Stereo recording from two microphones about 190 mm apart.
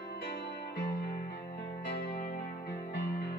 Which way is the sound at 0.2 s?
55° left (ahead or behind).